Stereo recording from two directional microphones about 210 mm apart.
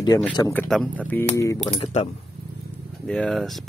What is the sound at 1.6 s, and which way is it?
Speech, 25° left (ahead or behind).